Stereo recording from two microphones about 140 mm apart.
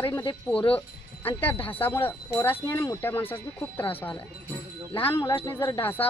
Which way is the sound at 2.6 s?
25° left (ahead or behind).